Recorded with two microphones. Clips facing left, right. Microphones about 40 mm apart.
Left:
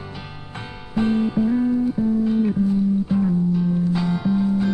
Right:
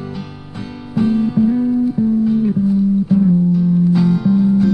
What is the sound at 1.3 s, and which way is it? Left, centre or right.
Music, centre.